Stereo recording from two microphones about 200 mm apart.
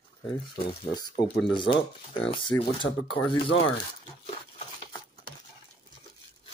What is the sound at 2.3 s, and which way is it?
Speech, 25° left (ahead or behind).